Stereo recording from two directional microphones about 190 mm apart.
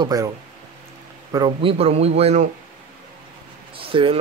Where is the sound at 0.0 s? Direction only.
20° right (ahead or behind).